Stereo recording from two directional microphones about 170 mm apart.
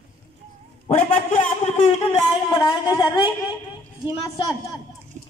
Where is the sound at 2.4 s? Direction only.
25° left (ahead or behind).